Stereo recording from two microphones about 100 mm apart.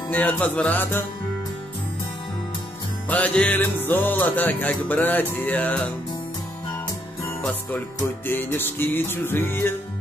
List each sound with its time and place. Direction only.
0.1 s music: 15° left (ahead or behind)
3.1 s music: 15° left (ahead or behind)
8.3 s music: 20° left (ahead or behind)